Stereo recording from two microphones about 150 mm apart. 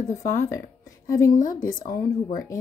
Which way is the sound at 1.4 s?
65° left (ahead or behind).